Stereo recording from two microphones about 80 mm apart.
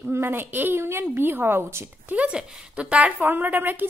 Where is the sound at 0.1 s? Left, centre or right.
Right.